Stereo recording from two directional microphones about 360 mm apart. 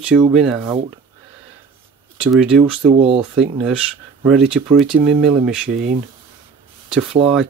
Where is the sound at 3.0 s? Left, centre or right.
Centre.